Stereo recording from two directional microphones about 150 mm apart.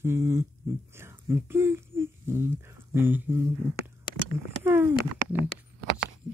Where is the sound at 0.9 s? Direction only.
15° right (ahead or behind).